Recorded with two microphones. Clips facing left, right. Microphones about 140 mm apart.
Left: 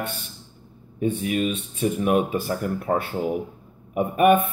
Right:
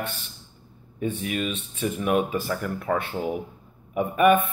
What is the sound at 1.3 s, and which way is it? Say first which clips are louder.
Speech: left 4 dB; 45° left (ahead or behind).